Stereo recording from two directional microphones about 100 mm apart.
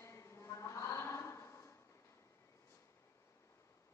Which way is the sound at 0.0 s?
30° left (ahead or behind).